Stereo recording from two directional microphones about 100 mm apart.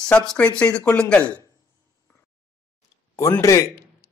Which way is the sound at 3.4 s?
30° left (ahead or behind).